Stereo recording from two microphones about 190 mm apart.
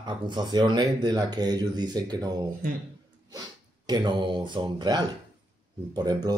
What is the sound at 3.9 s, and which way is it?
Speech, 25° right (ahead or behind).